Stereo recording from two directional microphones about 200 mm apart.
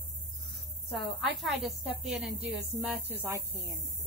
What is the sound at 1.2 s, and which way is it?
A woman's voice, centre (ahead or behind).